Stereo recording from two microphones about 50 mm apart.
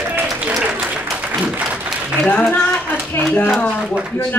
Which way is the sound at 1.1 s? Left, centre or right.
Right.